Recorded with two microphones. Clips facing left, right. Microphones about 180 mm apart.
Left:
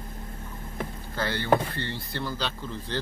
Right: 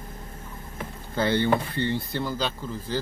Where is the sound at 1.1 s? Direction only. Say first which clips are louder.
Right 3 dB; 20° right (ahead or behind).